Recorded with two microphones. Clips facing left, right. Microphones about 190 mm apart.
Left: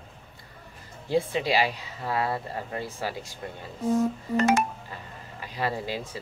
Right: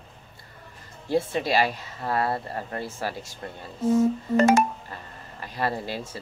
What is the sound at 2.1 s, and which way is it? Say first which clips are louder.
Speech: right 2 dB; 10° left (ahead or behind).